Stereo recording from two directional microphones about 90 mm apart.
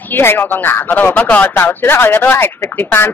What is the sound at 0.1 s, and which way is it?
Speech, 25° left (ahead or behind).